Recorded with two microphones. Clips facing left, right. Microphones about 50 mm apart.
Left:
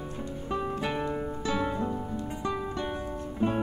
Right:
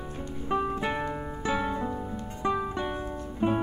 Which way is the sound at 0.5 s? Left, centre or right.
Centre.